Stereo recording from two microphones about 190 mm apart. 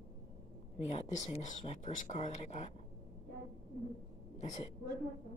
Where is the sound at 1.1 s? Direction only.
40° left (ahead or behind).